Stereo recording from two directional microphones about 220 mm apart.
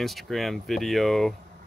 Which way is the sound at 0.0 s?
Centre (ahead or behind).